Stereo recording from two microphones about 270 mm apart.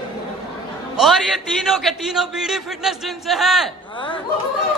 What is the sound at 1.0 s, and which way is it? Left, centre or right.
A man's voice, centre.